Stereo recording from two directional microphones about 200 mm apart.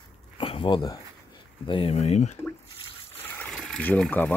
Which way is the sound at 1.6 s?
25° left (ahead or behind).